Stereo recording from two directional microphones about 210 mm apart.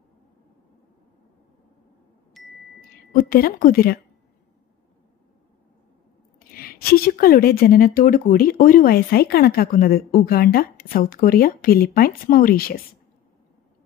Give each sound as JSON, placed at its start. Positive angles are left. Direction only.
{"t": 2.4, "sound": "chime", "side_deg": 0}
{"t": 3.1, "sound": "speech", "side_deg": 45}
{"t": 6.5, "sound": "speech", "side_deg": 45}